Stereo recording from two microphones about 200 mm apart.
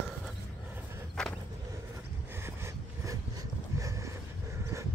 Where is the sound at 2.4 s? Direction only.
15° right (ahead or behind).